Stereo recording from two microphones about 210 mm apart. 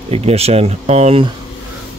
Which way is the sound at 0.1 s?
30° right (ahead or behind).